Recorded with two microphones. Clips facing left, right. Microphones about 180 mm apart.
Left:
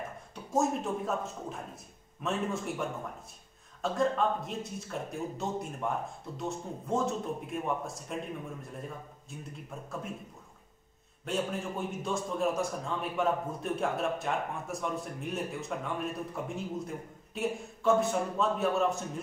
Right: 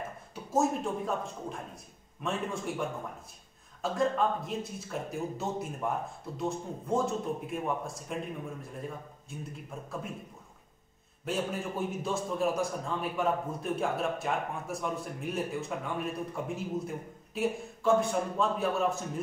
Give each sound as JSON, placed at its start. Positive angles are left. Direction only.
{"t": 0.3, "sound": "a man's voice", "side_deg": 0}
{"t": 11.2, "sound": "a man's voice", "side_deg": 0}